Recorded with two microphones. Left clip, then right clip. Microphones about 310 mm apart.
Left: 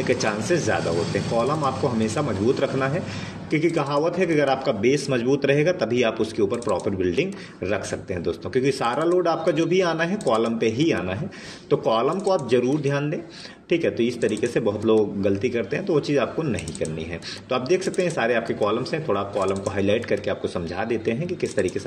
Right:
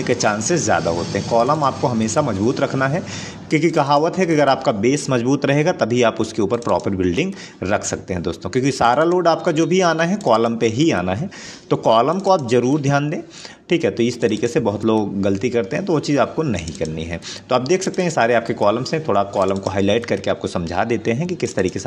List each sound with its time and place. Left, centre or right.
0.0 s a man's voice: right